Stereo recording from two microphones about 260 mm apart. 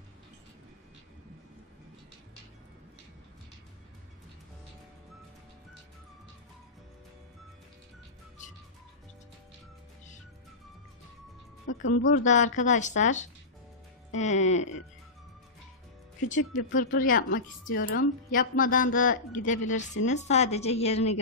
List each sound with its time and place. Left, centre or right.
11.6 s speech: left
12.3 s a woman's voice: left
16.5 s a woman's voice: left